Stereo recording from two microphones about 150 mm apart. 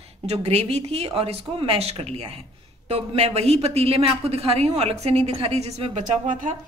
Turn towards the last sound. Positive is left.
turn(degrees=-60)  # may be behind; listen again after turning